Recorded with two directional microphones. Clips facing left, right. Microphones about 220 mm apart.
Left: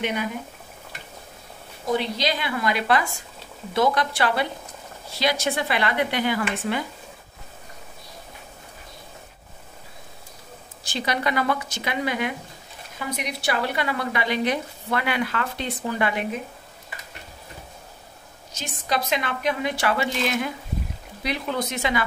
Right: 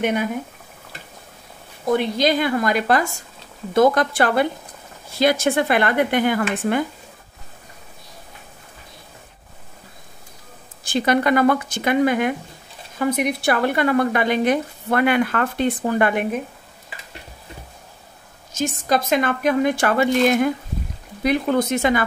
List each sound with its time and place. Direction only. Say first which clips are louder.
0.0 s speech: right 5 dB; 50° right (ahead or behind)
1.9 s speech: right 6 dB; 50° right (ahead or behind)
10.8 s speech: right 8 dB; 50° right (ahead or behind)
18.5 s speech: right 7 dB; 50° right (ahead or behind)